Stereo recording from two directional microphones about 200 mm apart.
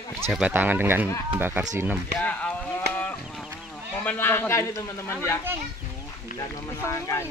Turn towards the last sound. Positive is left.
turn(degrees=15)  # may be behind; listen again after turning